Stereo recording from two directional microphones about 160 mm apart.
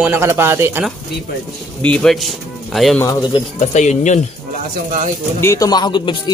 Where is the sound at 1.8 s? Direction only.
5° left (ahead or behind).